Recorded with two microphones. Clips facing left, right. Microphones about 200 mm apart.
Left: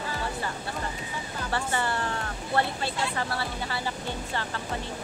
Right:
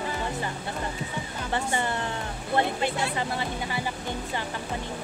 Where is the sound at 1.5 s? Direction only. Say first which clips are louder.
Right 1 dB; 20° right (ahead or behind).